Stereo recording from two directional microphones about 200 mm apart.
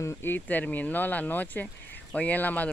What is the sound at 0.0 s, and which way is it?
Speech, 10° left (ahead or behind).